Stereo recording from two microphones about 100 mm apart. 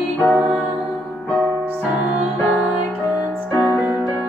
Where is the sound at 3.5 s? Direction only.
25° left (ahead or behind).